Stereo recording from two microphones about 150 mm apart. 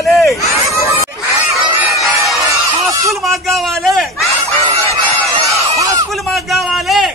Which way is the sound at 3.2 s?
Centre (ahead or behind).